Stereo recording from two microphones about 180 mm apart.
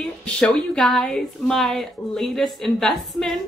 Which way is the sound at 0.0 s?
5° left (ahead or behind).